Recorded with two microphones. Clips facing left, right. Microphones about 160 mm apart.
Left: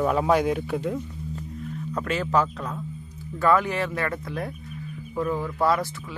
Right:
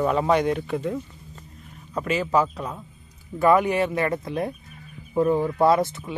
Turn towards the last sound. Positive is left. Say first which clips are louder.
# right 4 dB
turn(degrees=-25)  # may be behind; listen again after turning